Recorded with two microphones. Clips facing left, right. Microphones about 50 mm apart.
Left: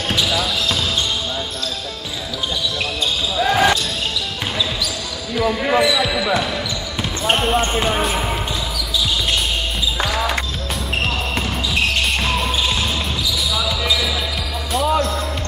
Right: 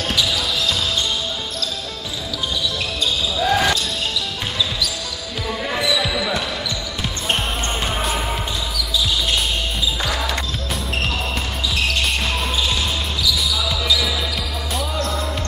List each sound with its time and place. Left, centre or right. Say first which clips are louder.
0.1 s basketball bounce: left 3 dB; left
3.4 s basketball bounce: left 2 dB; centre
5.7 s basketball bounce: left 3 dB; centre
7.0 s a sound: left 5 dB; centre
7.7 s basketball bounce: left 5 dB; centre
8.0 s basketball bounce: left 2 dB; centre
10.1 s basketball bounce: left 3 dB; centre